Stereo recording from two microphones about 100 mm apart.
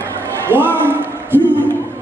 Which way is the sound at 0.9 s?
20° right (ahead or behind).